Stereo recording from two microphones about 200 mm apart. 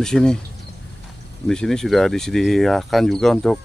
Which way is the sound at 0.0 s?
5° left (ahead or behind).